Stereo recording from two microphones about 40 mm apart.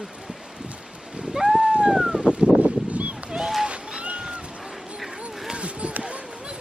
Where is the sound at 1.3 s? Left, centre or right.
Centre.